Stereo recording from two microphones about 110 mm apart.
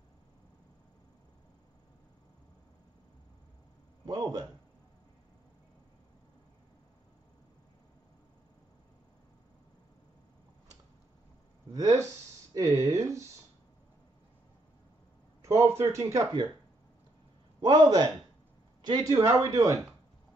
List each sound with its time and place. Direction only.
4.0 s a man's voice: 40° right (ahead or behind)
11.7 s speech: 30° right (ahead or behind)
15.4 s speech: 25° right (ahead or behind)
17.8 s speech: 35° right (ahead or behind)
19.0 s speech: 30° right (ahead or behind)